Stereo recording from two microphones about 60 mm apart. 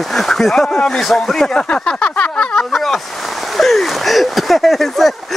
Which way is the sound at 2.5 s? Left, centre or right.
Centre.